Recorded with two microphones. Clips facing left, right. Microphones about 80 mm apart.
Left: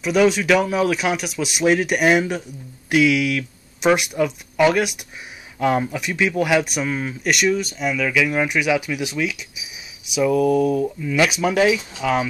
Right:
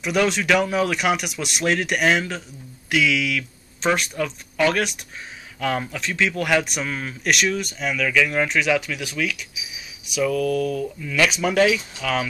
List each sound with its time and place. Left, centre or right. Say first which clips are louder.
0.0 s speech: left 4 dB; centre
2.9 s speech: left 4 dB; left